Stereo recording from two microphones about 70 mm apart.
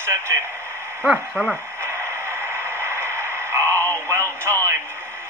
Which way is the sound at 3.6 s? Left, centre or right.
Left.